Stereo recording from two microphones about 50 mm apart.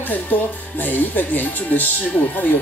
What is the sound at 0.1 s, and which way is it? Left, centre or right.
A woman's voice, left.